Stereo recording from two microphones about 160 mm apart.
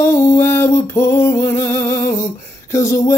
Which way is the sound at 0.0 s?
20° left (ahead or behind).